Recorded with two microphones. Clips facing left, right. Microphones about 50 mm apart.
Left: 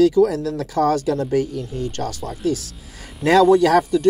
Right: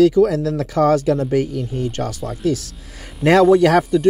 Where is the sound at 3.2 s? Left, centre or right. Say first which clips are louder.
Right 2 dB; right.